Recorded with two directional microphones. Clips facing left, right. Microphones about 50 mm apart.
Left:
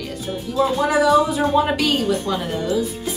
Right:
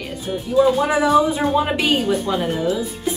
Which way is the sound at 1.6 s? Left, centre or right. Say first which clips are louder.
Left 1 dB; centre.